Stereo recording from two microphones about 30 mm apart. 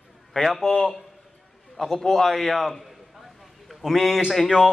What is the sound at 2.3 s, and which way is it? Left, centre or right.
Speech, centre.